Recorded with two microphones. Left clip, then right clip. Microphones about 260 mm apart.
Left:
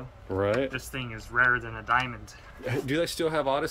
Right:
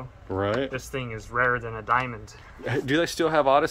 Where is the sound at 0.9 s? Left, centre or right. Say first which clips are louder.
Even; right.